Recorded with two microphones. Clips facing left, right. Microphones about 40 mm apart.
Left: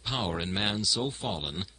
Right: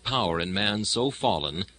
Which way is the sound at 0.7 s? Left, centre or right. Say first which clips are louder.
Right 5 dB; right.